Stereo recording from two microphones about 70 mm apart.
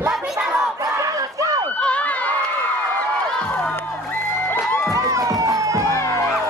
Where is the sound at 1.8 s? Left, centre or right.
Centre.